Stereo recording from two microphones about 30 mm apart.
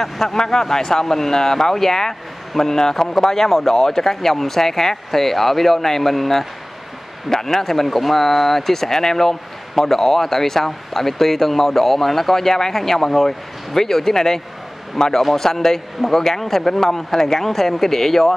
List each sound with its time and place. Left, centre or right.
0.0 s a man's voice: centre